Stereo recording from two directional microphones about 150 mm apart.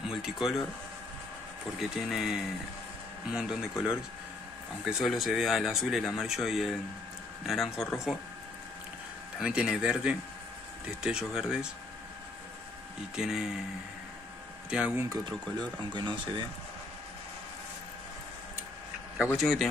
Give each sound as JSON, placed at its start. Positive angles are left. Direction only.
{"t": 0.1, "sound": "speech", "side_deg": -5}
{"t": 1.8, "sound": "speech", "side_deg": 0}
{"t": 9.4, "sound": "speech", "side_deg": -5}
{"t": 13.1, "sound": "speech", "side_deg": -5}
{"t": 14.7, "sound": "speech", "side_deg": -10}
{"t": 15.9, "sound": "speech", "side_deg": -30}
{"t": 19.3, "sound": "speech", "side_deg": 0}